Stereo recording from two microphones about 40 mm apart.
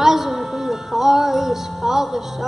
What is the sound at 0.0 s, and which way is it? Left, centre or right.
Music, centre.